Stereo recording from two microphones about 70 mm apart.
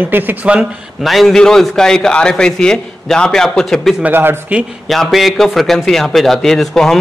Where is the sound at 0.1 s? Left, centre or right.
Right.